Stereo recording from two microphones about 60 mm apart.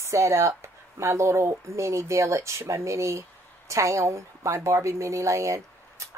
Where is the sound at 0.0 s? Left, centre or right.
Right.